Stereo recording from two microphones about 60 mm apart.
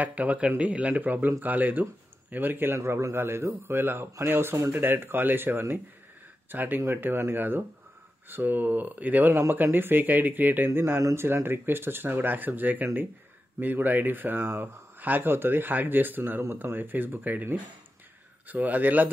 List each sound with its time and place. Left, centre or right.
0.0 s speech: right
2.8 s a man's voice: right
10.7 s a man's voice: right